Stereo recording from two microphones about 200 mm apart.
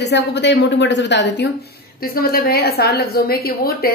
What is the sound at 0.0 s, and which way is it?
A woman's voice, 60° left (ahead or behind).